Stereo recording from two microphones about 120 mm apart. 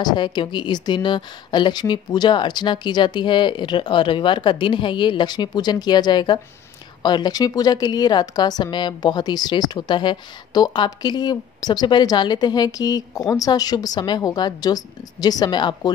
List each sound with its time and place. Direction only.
0.0 s a woman's voice: 35° left (ahead or behind)